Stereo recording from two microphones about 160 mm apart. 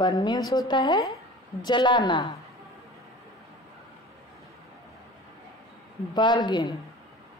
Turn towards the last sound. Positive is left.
turn(degrees=25)  # may be behind; listen again after turning